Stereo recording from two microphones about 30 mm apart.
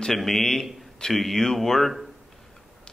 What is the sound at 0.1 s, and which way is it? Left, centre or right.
A man's voice, centre.